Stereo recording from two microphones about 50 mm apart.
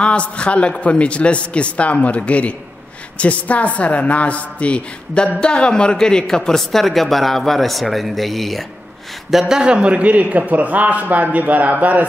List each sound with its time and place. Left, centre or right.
0.0 s a man's voice: left; by 8.6 s centre
9.3 s a man's voice: centre; by 12.0 s right